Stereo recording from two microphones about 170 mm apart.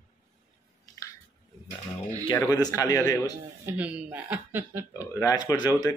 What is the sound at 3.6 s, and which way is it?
Speech, 10° right (ahead or behind).